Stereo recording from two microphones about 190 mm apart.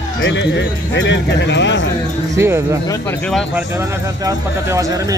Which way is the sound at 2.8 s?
10° left (ahead or behind).